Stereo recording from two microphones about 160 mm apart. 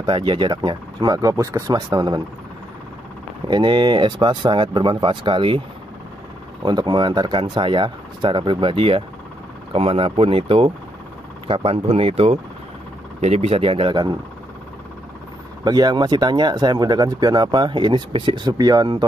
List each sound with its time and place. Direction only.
0.0 s speech: 30° right (ahead or behind)
3.4 s speech: 30° right (ahead or behind)
6.6 s speech: 25° right (ahead or behind)
15.6 s speech: 25° right (ahead or behind)